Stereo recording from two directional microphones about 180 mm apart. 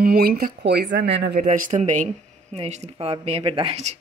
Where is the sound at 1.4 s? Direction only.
45° right (ahead or behind).